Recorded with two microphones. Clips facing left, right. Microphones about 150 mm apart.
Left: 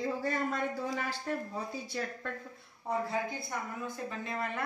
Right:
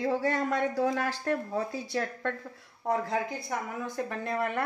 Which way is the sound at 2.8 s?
90° right.